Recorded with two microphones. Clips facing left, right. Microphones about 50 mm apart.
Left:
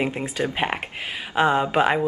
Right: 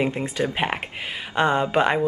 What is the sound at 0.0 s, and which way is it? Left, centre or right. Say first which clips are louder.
Speech: right 1 dB; centre.